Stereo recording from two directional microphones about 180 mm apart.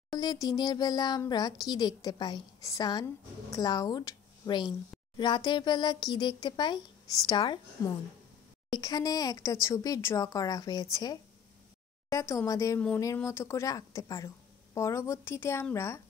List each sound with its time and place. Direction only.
0.1 s a child's voice: 20° left (ahead or behind)